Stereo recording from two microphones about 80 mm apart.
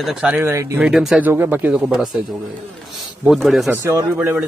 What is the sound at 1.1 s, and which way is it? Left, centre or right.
Speech, right.